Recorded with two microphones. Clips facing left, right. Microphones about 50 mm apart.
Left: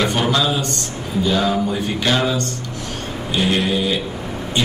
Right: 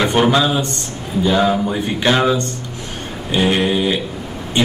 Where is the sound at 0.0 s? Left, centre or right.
Right.